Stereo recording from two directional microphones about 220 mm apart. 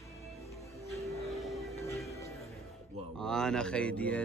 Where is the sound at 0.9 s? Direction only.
15° left (ahead or behind).